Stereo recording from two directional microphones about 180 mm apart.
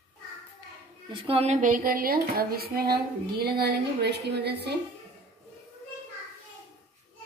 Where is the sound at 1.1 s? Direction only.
30° right (ahead or behind); by 4.7 s 65° right (ahead or behind).